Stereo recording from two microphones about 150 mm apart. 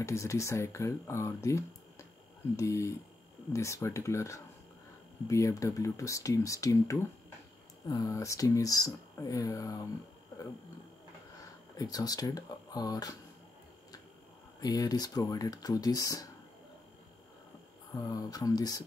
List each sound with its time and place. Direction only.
0.0 s speech: 20° left (ahead or behind)
11.3 s speech: 25° left (ahead or behind)
14.6 s speech: 25° left (ahead or behind)
17.9 s speech: 25° left (ahead or behind)